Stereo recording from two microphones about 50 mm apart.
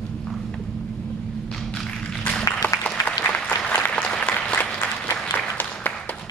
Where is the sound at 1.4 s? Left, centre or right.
Centre.